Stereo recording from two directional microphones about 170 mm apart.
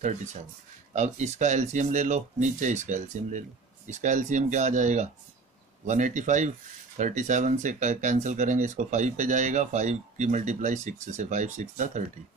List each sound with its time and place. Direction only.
0.0 s speech: 45° right (ahead or behind)